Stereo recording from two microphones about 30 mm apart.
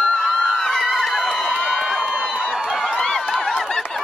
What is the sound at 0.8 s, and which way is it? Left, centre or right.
Crowd, centre.